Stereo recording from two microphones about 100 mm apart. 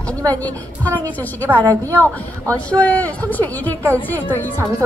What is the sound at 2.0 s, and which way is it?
A woman's voice, 15° left (ahead or behind).